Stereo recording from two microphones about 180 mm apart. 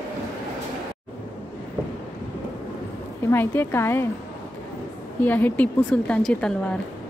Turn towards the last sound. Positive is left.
turn(degrees=5)  # may be behind; listen again after turning